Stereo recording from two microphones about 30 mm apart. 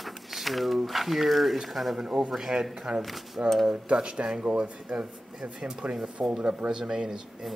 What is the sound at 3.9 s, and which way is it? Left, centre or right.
Speech, right.